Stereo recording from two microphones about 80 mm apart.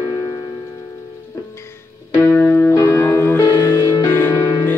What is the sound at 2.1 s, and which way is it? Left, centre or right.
Music, left.